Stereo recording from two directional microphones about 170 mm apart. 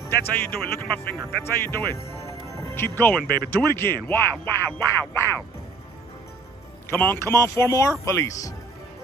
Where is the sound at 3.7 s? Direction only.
15° left (ahead or behind).